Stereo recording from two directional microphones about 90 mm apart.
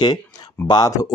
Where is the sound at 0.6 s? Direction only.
45° left (ahead or behind).